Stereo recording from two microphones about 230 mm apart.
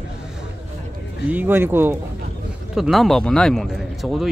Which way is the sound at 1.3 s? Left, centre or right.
Centre.